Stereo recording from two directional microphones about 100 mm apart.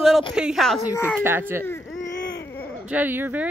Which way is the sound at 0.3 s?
5° right (ahead or behind).